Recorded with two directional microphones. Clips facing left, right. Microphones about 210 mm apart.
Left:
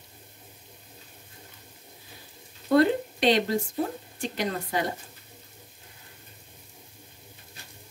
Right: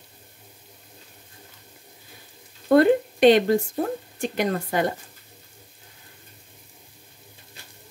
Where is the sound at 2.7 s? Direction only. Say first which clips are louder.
Right 4 dB; 50° right (ahead or behind).